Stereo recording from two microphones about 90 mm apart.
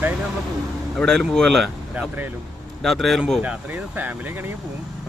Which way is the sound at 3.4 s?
15° right (ahead or behind).